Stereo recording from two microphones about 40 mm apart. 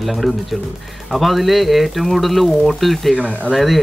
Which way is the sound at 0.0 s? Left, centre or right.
Centre.